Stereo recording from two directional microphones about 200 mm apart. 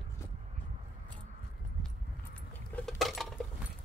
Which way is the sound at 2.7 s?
5° left (ahead or behind).